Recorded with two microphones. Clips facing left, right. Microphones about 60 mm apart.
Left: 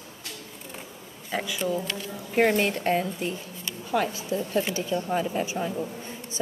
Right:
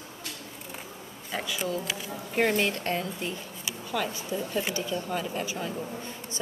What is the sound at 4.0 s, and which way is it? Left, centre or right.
Speech, left.